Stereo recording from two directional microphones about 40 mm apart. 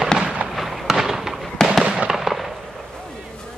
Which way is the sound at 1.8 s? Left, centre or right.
Right.